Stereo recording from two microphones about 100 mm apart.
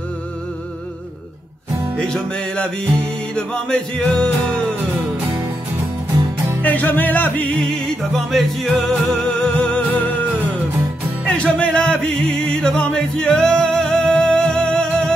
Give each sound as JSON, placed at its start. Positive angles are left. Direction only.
{"t": 2.0, "sound": "music", "side_deg": 5}
{"t": 6.6, "sound": "music", "side_deg": 15}
{"t": 7.5, "sound": "music", "side_deg": 5}
{"t": 11.2, "sound": "music", "side_deg": 10}